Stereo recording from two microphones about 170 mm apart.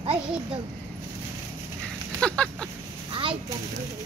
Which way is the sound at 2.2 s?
5° left (ahead or behind).